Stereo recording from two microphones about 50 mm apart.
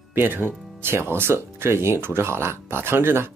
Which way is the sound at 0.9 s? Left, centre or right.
Right.